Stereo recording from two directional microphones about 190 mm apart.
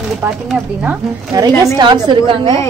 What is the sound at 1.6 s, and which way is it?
Speech, 20° right (ahead or behind).